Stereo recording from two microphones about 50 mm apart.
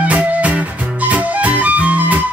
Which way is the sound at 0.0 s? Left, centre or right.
Right.